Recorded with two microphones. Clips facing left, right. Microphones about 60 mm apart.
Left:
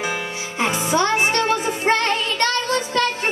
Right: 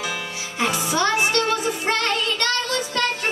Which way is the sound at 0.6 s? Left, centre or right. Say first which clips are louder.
Left 2 dB; left.